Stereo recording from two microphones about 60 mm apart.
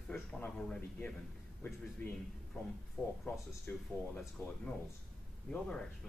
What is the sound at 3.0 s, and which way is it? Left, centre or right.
Speech, left.